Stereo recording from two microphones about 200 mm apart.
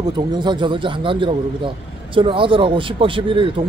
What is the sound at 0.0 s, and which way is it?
Speech, 20° right (ahead or behind).